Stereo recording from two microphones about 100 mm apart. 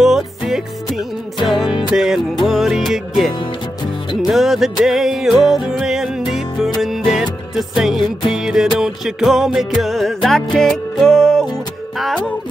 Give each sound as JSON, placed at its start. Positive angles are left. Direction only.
{"t": 0.0, "sound": "music", "side_deg": -5}
{"t": 3.8, "sound": "music", "side_deg": 50}
{"t": 4.3, "sound": "music", "side_deg": 0}